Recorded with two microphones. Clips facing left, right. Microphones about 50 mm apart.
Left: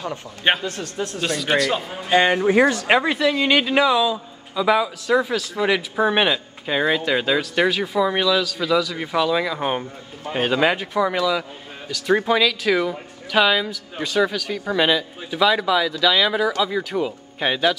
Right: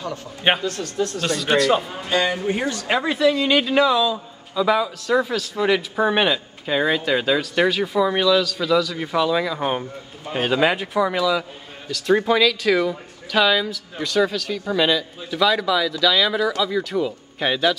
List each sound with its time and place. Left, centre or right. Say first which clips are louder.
0.7 s speech: right 3 dB; left
1.2 s speech: right 1 dB; centre
2.7 s speech: left 4 dB; left
3.0 s speech: right 1 dB; centre